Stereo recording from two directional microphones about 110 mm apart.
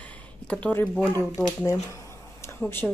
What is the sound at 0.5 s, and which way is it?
Speech, 15° left (ahead or behind).